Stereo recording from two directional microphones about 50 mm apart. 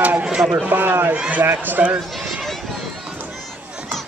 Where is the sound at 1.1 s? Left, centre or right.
Right.